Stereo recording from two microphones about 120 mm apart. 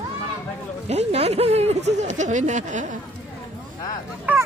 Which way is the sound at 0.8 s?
60° right (ahead or behind).